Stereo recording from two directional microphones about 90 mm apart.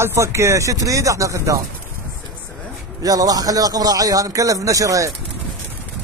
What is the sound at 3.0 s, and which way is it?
Speech, 45° right (ahead or behind).